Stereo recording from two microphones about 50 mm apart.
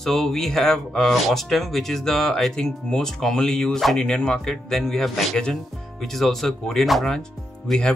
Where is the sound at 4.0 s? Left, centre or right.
Centre.